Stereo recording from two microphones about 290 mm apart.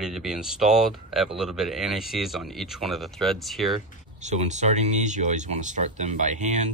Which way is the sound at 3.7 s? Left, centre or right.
Right.